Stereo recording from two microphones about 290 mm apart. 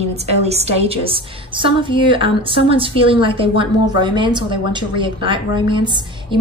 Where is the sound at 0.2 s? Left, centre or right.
Right.